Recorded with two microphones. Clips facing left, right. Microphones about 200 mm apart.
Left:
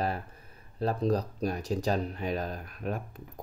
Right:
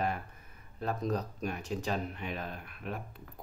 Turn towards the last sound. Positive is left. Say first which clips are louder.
# left 5 dB
turn(degrees=45)  # may be behind; listen again after turning